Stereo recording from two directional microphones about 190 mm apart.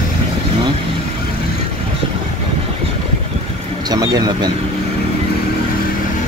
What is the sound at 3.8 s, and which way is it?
Speech, 20° right (ahead or behind).